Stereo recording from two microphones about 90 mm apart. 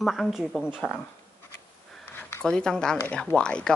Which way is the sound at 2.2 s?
25° left (ahead or behind).